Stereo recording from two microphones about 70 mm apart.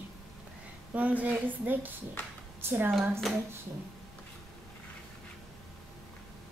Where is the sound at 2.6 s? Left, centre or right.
Right.